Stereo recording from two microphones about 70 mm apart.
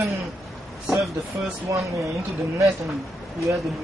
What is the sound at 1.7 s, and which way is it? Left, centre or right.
Speech, right.